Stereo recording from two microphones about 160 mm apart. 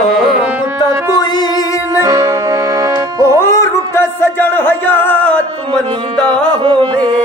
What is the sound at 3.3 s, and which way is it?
Music, 15° left (ahead or behind).